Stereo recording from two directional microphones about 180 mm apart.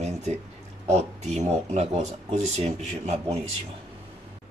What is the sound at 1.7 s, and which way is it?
A man's voice, 35° right (ahead or behind).